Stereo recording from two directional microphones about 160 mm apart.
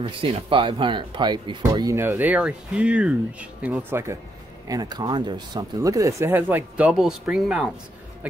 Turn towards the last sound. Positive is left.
turn(degrees=-5)  # may be behind; listen again after turning